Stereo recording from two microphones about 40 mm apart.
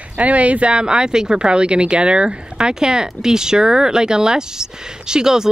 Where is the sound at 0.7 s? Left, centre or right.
Right.